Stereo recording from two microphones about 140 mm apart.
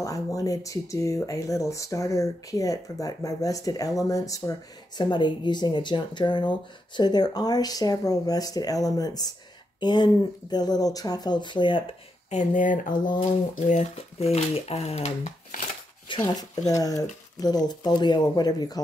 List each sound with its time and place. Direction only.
0.0 s speech: 25° left (ahead or behind)
12.3 s speech: 60° left (ahead or behind)
16.1 s speech: 35° left (ahead or behind)
16.6 s speech: 25° left (ahead or behind)